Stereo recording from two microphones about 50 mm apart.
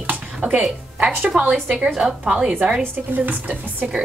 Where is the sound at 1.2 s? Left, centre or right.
Right.